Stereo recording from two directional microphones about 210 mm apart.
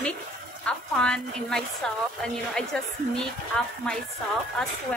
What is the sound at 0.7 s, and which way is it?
A woman's voice, 5° left (ahead or behind).